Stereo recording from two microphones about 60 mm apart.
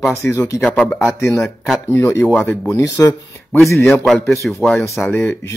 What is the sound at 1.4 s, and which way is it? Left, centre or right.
Speech, centre.